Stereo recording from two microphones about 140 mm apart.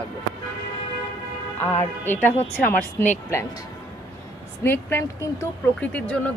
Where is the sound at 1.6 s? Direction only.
15° left (ahead or behind).